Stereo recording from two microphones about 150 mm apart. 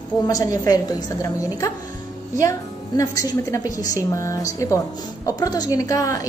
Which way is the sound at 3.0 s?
20° left (ahead or behind).